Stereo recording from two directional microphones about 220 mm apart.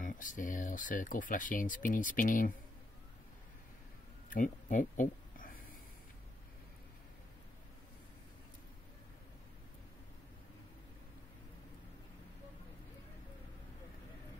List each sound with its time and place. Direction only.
0.0 s speech: 35° left (ahead or behind)
4.3 s speech: 35° left (ahead or behind)